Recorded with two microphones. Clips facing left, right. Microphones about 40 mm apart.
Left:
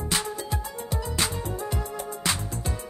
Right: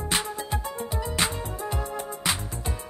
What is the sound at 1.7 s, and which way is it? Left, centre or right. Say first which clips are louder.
Music: right 1 dB; centre.